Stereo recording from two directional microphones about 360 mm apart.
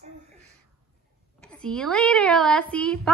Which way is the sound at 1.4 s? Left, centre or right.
Centre.